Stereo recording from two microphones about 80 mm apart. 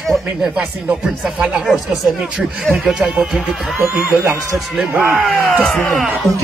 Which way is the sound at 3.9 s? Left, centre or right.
Centre.